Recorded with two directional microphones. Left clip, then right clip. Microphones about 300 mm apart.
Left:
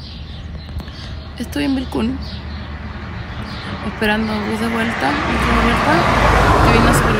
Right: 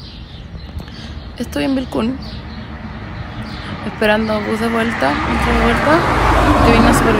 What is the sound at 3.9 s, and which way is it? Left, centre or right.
Speech, centre.